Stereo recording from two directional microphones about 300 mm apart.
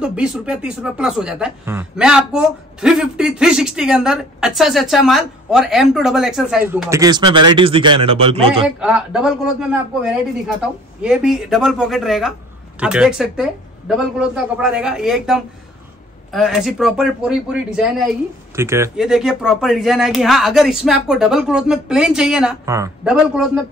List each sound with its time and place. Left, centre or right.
0.0 s speech: centre
8.6 s speech: centre